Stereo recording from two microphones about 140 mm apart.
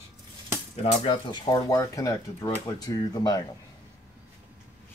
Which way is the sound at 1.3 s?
30° left (ahead or behind).